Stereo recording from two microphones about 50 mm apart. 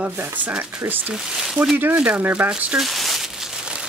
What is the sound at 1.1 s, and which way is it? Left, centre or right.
Speech, centre.